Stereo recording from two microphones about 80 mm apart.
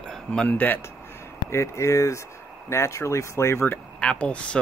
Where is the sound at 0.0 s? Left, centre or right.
Centre.